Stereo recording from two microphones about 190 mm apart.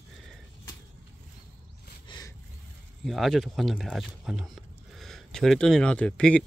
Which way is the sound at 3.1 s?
Centre (ahead or behind).